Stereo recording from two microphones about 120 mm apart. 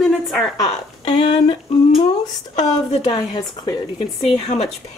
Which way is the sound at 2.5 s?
65° left (ahead or behind).